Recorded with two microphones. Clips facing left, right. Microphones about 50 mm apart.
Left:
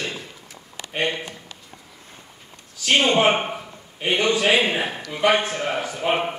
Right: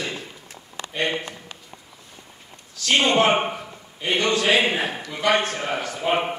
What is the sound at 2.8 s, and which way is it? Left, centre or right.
Speech, centre.